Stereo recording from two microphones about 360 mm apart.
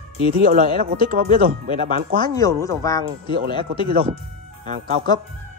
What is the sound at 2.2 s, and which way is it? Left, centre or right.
Speech, centre.